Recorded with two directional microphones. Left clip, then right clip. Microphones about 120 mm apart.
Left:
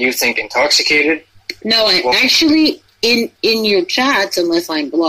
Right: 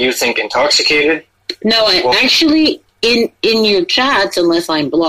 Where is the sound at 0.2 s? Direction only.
20° right (ahead or behind).